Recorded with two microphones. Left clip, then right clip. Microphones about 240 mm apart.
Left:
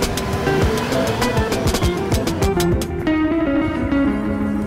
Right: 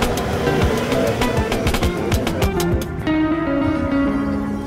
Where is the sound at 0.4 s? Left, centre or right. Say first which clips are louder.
Left 2 dB; centre.